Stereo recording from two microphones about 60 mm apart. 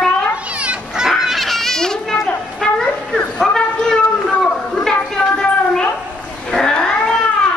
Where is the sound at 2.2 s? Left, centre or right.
Centre.